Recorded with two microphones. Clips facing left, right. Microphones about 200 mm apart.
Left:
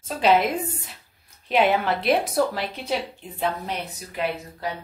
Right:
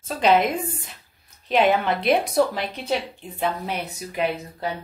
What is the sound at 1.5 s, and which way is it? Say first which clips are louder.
Speech: right 1 dB; 5° left (ahead or behind).